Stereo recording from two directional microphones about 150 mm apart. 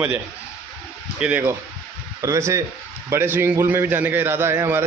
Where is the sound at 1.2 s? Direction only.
10° right (ahead or behind).